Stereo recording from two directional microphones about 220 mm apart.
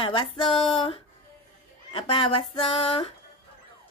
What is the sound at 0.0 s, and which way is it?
A woman's voice, 25° left (ahead or behind).